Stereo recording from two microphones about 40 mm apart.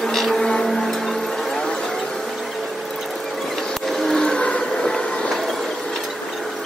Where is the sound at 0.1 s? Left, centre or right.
Centre.